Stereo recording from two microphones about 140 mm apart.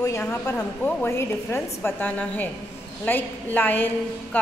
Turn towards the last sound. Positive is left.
turn(degrees=15)  # may be behind; listen again after turning